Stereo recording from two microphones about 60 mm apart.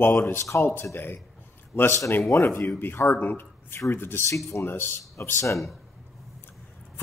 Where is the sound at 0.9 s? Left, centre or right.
Left.